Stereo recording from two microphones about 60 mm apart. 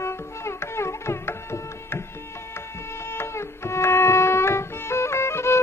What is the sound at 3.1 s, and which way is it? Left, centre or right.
Music, left.